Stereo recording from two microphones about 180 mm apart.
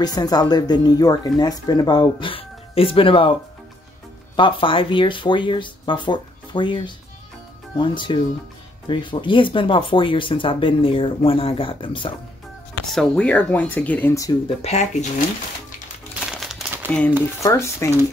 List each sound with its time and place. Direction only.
0.0 s speech: 20° left (ahead or behind)
4.4 s speech: 30° left (ahead or behind)
12.9 s speech: 5° left (ahead or behind)
14.6 s speech: 40° left (ahead or behind)
16.3 s crumpling: centre (ahead or behind)
16.9 s speech: 10° left (ahead or behind)